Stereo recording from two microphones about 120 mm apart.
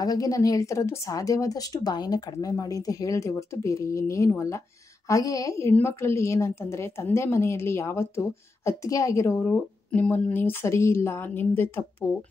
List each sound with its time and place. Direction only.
0.0 s a woman's voice: 30° left (ahead or behind)
9.8 s a woman's voice: 10° left (ahead or behind)